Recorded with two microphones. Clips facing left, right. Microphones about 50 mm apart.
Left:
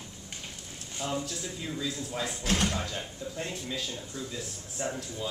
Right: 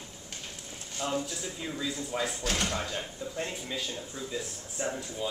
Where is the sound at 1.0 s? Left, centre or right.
Centre.